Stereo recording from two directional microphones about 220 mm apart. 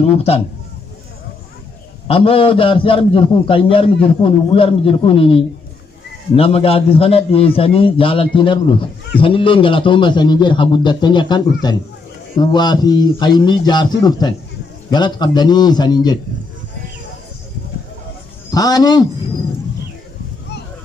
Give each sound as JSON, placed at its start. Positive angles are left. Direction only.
{"t": 2.0, "sound": "a man's voice", "side_deg": 25}
{"t": 18.5, "sound": "a man's voice", "side_deg": 15}